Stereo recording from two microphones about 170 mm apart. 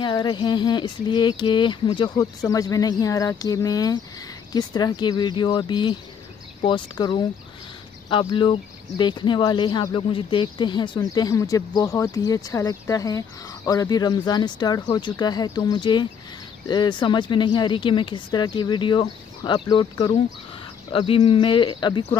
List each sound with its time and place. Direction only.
0.0 s speech: 25° left (ahead or behind)